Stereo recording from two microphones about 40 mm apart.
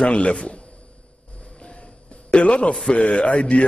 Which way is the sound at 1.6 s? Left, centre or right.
Left.